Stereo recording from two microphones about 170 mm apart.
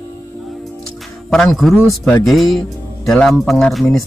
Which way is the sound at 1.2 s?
Centre (ahead or behind).